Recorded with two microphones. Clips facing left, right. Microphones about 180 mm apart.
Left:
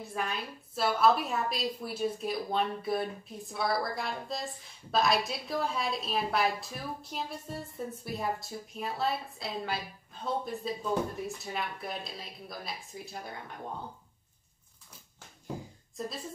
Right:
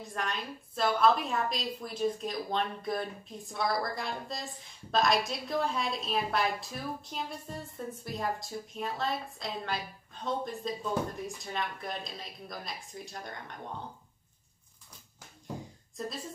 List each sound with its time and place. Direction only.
0.0 s a woman's voice: 5° left (ahead or behind)